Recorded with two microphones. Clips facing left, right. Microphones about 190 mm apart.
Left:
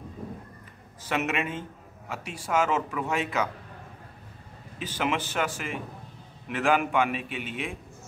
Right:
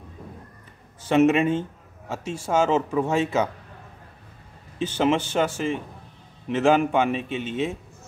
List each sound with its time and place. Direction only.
1.0 s a man's voice: 30° right (ahead or behind)
4.7 s a man's voice: 25° right (ahead or behind)